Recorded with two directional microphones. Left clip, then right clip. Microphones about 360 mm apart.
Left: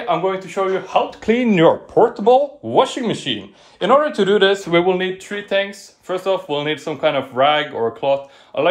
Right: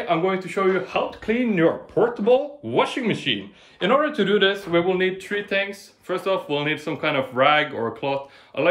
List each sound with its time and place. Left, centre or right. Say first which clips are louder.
0.1 s speech: left 3 dB; centre
1.2 s speech: left 7 dB; left
4.6 s speech: left 5 dB; left
4.9 s speech: left 1 dB; centre